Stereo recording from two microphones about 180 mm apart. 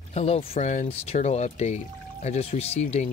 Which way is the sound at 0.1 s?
35° left (ahead or behind).